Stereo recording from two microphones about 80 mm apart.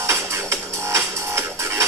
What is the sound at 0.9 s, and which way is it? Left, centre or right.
Music, right.